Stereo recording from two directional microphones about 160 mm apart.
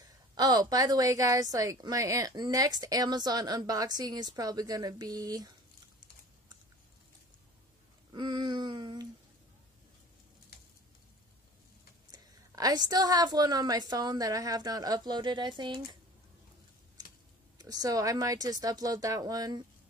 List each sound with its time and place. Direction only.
0.0 s a woman's voice: 25° right (ahead or behind)
8.1 s a sound: 30° right (ahead or behind)
12.1 s a woman's voice: 25° right (ahead or behind)
17.6 s a woman's voice: 20° right (ahead or behind)